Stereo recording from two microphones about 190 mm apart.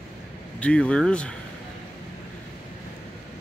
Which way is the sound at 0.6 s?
5° left (ahead or behind).